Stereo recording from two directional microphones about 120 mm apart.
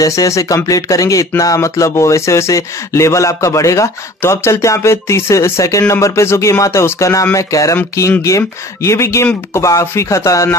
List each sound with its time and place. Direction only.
0.0 s speech: 25° left (ahead or behind)